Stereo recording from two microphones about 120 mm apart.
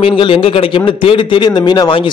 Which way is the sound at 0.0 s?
50° left (ahead or behind).